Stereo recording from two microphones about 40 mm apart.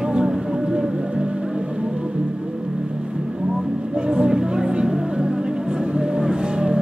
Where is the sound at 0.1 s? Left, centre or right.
Right.